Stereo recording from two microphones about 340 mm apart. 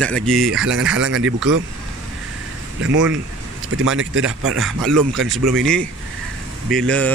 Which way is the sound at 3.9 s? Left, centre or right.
Right.